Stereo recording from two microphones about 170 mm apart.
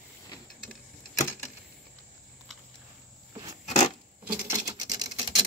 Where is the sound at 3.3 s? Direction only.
20° right (ahead or behind).